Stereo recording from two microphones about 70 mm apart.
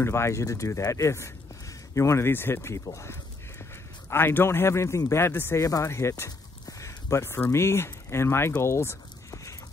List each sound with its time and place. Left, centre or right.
0.0 s speech: left
4.1 s speech: left
5.6 s speech: left
7.2 s speech: left
8.6 s a sound: left